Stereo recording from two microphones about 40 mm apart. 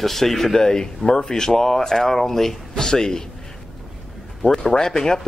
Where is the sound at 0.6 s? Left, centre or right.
Centre.